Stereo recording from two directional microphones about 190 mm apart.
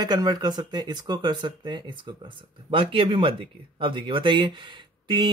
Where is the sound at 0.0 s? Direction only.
20° right (ahead or behind).